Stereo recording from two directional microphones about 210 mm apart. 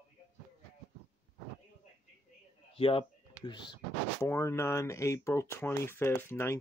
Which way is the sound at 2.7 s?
25° left (ahead or behind).